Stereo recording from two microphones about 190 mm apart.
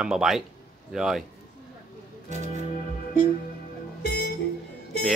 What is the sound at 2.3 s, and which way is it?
Music, 40° right (ahead or behind).